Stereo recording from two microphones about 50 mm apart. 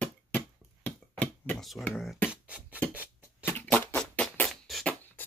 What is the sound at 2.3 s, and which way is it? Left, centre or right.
Beatboxing, right.